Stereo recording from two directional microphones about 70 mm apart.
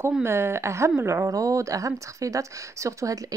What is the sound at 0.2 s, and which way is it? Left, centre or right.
A woman's voice, right.